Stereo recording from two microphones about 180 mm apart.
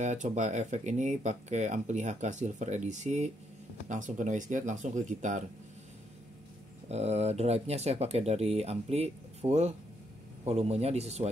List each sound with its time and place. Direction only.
0.0 s speech: 40° right (ahead or behind)
6.9 s speech: 35° right (ahead or behind)